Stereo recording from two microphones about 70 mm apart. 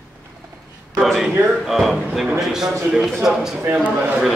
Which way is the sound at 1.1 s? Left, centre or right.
Centre.